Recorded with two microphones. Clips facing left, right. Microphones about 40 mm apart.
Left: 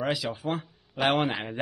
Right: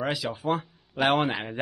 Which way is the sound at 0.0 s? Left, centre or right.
Centre.